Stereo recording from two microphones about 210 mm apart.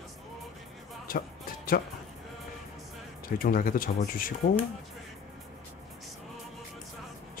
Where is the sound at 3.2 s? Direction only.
45° left (ahead or behind).